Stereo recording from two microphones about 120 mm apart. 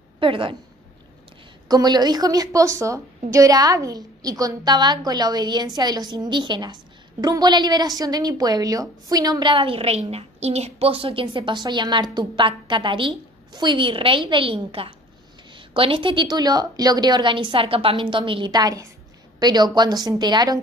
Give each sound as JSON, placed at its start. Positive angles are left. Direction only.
{"t": 0.2, "sound": "a woman's voice", "side_deg": -45}
{"t": 1.7, "sound": "a woman's voice", "side_deg": -35}